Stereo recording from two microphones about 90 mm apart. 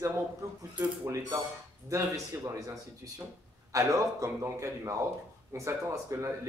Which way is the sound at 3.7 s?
35° right (ahead or behind).